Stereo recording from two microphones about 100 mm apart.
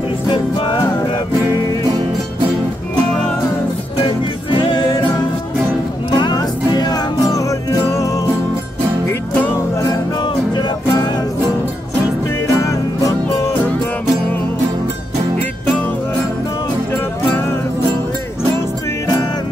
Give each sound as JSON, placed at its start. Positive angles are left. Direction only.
{"t": 0.3, "sound": "music", "side_deg": 45}
{"t": 4.0, "sound": "music", "side_deg": 55}
{"t": 6.1, "sound": "music", "side_deg": 45}